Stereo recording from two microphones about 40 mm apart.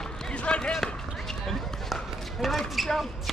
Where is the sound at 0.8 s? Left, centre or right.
Centre.